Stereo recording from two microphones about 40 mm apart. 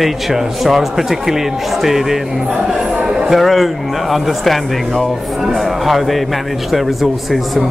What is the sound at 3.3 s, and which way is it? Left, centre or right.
A man's voice, centre.